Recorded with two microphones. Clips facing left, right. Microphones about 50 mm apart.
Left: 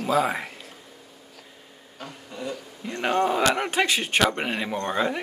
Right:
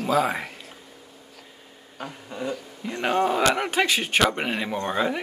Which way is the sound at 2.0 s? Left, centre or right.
Centre.